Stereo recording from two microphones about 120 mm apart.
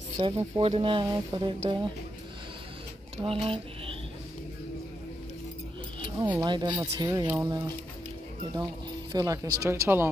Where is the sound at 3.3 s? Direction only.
50° right (ahead or behind).